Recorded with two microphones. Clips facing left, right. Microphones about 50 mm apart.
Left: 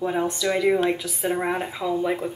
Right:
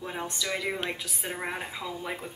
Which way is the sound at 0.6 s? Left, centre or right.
Centre.